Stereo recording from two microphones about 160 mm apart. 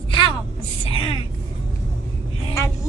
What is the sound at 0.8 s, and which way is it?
Vehicle, 35° left (ahead or behind).